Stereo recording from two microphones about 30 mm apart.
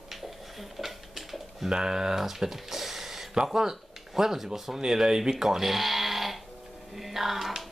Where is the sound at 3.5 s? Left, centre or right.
Centre.